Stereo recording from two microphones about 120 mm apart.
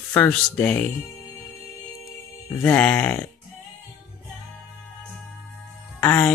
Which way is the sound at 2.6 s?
15° left (ahead or behind).